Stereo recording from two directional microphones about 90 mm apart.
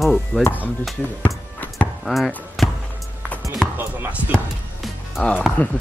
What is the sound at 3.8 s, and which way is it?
Speech, 20° right (ahead or behind).